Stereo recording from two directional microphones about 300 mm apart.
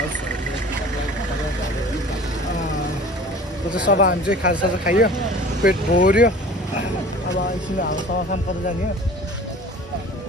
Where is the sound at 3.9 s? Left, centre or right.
Left.